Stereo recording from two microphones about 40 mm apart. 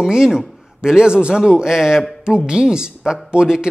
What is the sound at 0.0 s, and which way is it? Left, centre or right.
A man's voice, centre.